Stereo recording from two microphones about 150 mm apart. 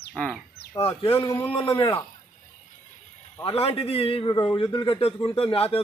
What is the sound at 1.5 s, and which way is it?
Speech, 35° left (ahead or behind).